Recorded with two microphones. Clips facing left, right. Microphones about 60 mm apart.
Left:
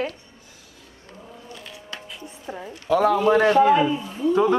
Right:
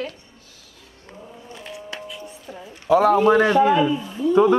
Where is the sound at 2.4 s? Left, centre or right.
Left.